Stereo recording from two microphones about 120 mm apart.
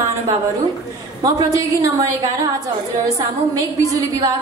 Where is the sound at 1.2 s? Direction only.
30° right (ahead or behind).